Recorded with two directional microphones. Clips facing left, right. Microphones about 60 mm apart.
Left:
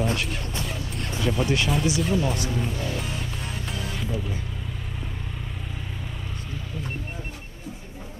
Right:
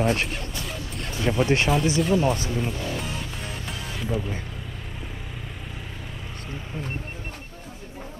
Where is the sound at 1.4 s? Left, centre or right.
Right.